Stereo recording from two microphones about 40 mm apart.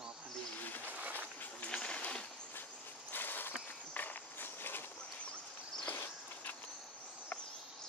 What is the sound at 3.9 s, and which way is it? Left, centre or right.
Walk, left.